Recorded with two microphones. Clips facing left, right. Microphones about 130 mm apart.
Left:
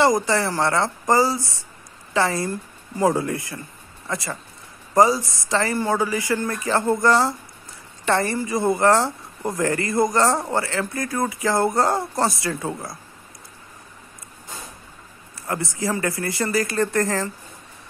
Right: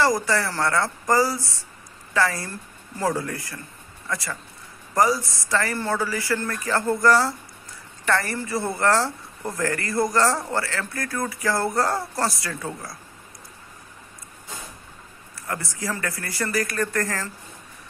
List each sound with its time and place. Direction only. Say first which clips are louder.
0.0 s speech: left 3 dB; 20° left (ahead or behind)
15.4 s speech: left 4 dB; 20° left (ahead or behind)